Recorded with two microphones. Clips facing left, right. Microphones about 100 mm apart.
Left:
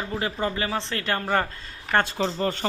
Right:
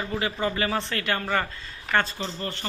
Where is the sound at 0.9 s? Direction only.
30° left (ahead or behind).